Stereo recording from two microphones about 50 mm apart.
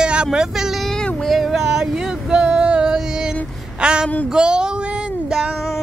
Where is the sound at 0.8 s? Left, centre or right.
Centre.